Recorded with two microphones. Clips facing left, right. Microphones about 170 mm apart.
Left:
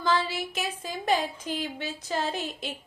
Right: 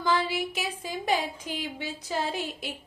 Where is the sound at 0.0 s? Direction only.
15° right (ahead or behind).